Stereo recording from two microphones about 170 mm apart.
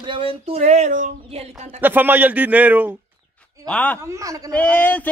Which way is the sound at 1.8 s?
10° right (ahead or behind).